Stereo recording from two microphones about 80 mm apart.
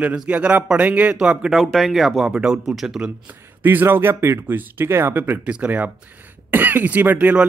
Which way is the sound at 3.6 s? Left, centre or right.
Right.